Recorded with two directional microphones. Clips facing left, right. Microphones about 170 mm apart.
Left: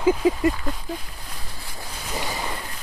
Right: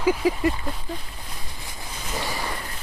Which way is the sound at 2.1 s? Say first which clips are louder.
Even; 15° left (ahead or behind).